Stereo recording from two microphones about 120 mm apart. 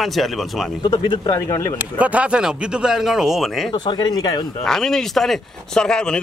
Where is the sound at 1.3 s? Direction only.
25° left (ahead or behind).